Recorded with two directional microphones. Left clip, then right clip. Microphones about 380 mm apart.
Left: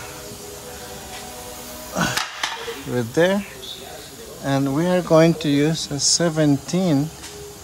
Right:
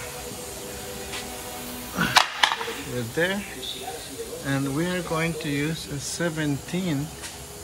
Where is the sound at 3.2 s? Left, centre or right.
Centre.